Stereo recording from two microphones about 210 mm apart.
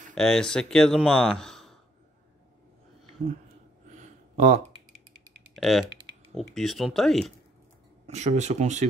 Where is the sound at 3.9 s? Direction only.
35° right (ahead or behind).